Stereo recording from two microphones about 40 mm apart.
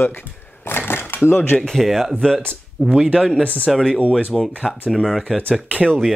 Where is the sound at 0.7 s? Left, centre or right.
Left.